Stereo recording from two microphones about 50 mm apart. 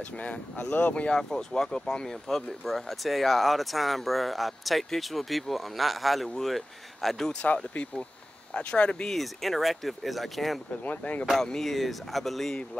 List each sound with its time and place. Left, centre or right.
0.2 s speech: left
1.1 s speech: centre
7.4 s speech: left
9.1 s speech: centre
10.8 s speech: left
11.4 s speech: centre